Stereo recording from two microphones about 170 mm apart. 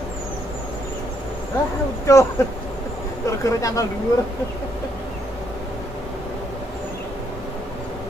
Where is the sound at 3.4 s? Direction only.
20° left (ahead or behind).